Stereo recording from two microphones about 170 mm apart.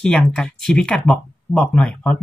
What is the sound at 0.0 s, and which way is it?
Speech, 5° left (ahead or behind).